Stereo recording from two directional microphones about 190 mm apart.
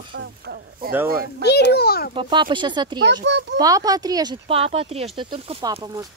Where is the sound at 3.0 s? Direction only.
65° right (ahead or behind).